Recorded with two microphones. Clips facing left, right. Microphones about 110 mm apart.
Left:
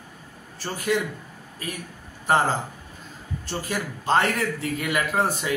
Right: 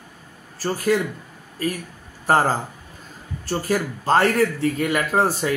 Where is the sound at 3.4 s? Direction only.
40° right (ahead or behind).